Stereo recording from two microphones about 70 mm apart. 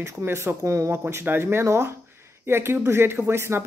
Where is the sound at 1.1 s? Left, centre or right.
Right.